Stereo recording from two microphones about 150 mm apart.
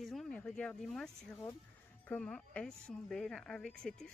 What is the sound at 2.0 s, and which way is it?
A woman's voice, 10° left (ahead or behind).